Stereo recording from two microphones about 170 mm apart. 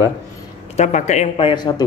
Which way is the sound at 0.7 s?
45° left (ahead or behind).